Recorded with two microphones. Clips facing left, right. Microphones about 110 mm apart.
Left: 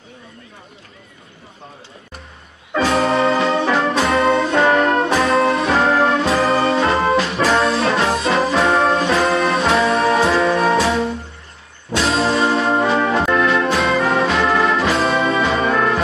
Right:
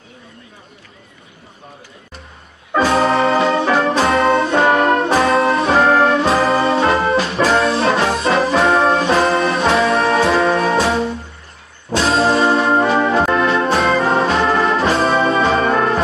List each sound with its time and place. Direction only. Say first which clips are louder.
2.7 s organ: right 2 dB; 30° right (ahead or behind)
3.6 s brass instrument: right 2 dB; 30° right (ahead or behind)
10.7 s music: even; 30° right (ahead or behind)
11.9 s brass instrument: right 3 dB; 30° right (ahead or behind)
12.9 s music: right 2 dB; 30° right (ahead or behind)